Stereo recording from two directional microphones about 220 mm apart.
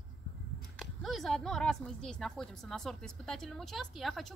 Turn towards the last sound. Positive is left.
turn(degrees=0)  # may be behind; listen again after turning